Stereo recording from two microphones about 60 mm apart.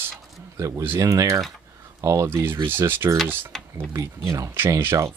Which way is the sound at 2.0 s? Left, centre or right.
Right.